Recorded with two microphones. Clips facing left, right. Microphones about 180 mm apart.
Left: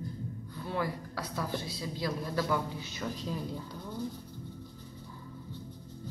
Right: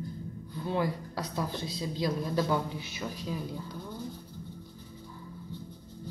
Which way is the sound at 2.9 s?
5° right (ahead or behind).